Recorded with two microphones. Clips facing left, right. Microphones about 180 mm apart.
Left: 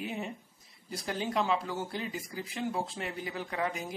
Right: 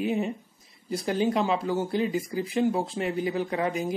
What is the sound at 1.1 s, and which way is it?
Speech, 15° right (ahead or behind).